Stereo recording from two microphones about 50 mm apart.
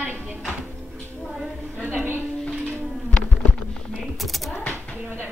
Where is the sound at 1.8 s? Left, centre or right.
Right.